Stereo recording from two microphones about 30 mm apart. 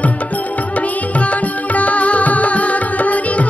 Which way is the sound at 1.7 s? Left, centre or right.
Left.